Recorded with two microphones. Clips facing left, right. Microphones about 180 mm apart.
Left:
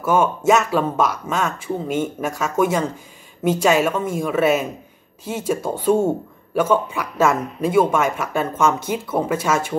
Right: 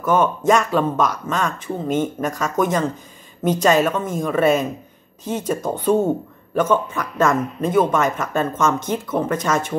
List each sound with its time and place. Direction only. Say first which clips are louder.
0.0 s speech: even; 10° left (ahead or behind)